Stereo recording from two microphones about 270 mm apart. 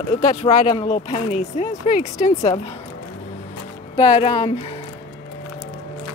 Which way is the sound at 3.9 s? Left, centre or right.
Left.